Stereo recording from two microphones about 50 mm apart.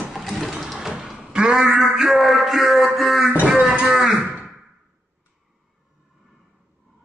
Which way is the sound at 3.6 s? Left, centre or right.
Right.